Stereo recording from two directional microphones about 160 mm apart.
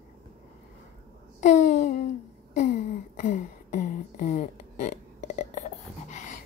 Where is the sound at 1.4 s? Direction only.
50° left (ahead or behind).